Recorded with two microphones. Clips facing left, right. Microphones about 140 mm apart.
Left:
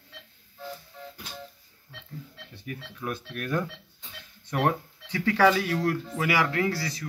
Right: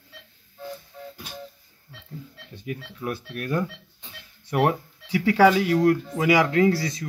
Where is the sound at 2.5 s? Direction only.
15° right (ahead or behind).